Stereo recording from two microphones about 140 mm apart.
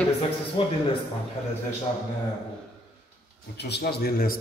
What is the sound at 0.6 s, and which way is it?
Speech, 40° left (ahead or behind).